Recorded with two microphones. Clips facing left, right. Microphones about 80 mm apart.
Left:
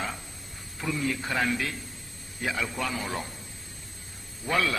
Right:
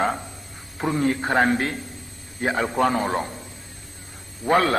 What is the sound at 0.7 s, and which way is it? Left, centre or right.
A man's voice, right.